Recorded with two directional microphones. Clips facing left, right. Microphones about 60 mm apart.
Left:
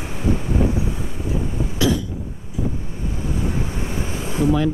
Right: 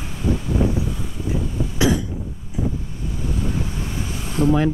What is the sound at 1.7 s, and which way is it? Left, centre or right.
Cough, right.